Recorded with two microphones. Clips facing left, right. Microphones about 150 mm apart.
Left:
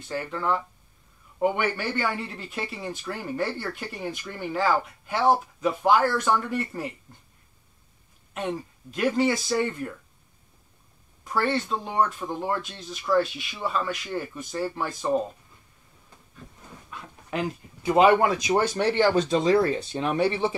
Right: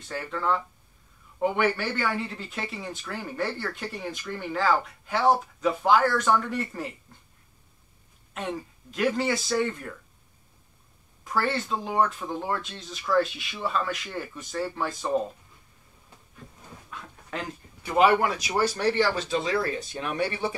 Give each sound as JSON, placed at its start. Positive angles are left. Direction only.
{"t": 0.1, "sound": "speech", "side_deg": 5}
{"t": 8.4, "sound": "speech", "side_deg": 0}
{"t": 11.2, "sound": "speech", "side_deg": 0}
{"t": 16.9, "sound": "a sound", "side_deg": 15}
{"t": 19.1, "sound": "speech", "side_deg": 35}